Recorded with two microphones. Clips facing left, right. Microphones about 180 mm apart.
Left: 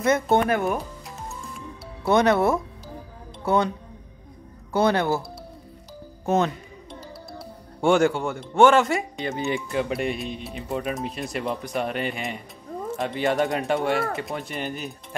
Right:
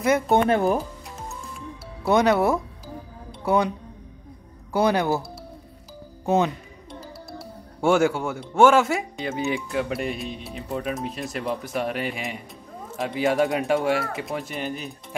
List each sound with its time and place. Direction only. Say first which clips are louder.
0.0 s speech: even; 10° right (ahead or behind)
0.5 s speech: right 3 dB; 30° right (ahead or behind)
0.7 s music: right 3 dB; centre (ahead or behind)
2.0 s speech: even; 15° right (ahead or behind)
4.7 s speech: even; 15° right (ahead or behind)
6.2 s speech: right 1 dB; 15° right (ahead or behind)
7.8 s speech: even; 5° right (ahead or behind)